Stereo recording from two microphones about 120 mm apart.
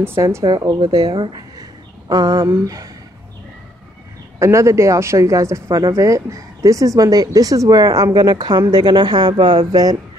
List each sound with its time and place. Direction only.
0.0 s speech: 20° right (ahead or behind)
4.4 s speech: 25° right (ahead or behind)